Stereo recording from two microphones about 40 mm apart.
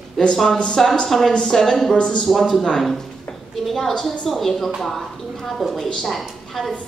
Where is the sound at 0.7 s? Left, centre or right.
Centre.